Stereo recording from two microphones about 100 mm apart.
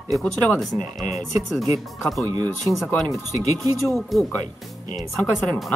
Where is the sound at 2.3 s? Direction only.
45° right (ahead or behind).